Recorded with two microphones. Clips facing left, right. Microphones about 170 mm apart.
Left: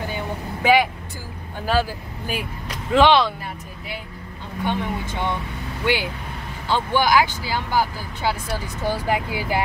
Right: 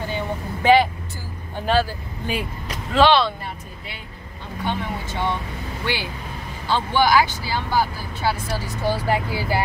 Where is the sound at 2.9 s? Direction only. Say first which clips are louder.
Left 1 dB; 15° left (ahead or behind).